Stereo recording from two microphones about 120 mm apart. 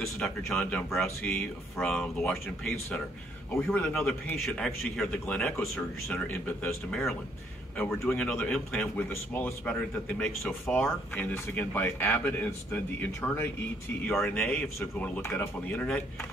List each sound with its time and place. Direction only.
0.2 s speech: 5° left (ahead or behind)
5.6 s speech: 15° left (ahead or behind)
7.7 s speech: 15° left (ahead or behind)
14.8 s speech: 20° left (ahead or behind)